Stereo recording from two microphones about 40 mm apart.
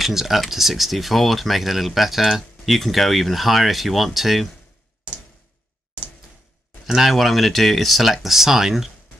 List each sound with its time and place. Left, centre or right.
0.0 s speech: centre
6.9 s speech: centre